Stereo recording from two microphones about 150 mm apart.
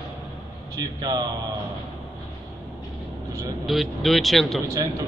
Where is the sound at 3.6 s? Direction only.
Centre (ahead or behind).